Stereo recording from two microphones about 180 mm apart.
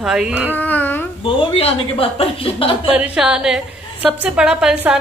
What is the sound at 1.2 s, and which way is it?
A woman's voice, 30° left (ahead or behind).